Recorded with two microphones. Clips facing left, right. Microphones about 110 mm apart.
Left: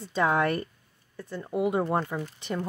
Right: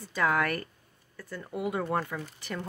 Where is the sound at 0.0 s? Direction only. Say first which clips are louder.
Left 3 dB; 25° left (ahead or behind).